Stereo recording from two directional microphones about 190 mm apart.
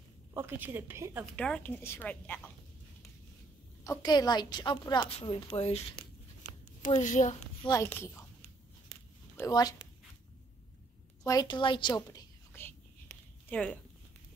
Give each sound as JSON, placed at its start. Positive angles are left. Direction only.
{"t": 0.3, "sound": "a woman's voice", "side_deg": -10}
{"t": 1.2, "sound": "a woman's voice", "side_deg": 5}
{"t": 3.8, "sound": "a woman's voice", "side_deg": 20}
{"t": 7.0, "sound": "speech", "side_deg": 40}
{"t": 7.6, "sound": "a woman's voice", "side_deg": 15}
{"t": 9.4, "sound": "a woman's voice", "side_deg": 20}
{"t": 11.2, "sound": "whispering", "side_deg": 20}